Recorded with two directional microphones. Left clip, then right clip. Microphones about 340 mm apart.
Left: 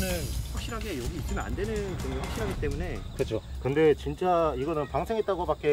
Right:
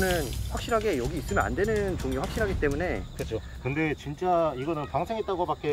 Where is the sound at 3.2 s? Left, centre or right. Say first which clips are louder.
Left 3 dB; left.